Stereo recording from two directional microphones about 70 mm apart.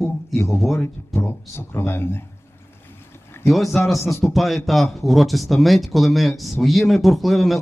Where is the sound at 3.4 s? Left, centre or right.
Centre.